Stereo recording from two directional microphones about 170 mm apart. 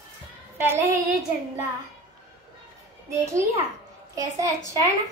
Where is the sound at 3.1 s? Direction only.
15° right (ahead or behind).